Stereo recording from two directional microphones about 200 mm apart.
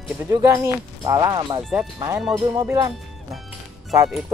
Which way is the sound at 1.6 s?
5° right (ahead or behind).